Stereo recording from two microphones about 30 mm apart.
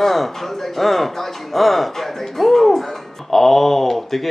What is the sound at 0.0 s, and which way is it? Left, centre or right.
Speech, centre.